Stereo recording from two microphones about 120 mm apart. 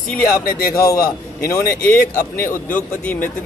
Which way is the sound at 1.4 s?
25° left (ahead or behind).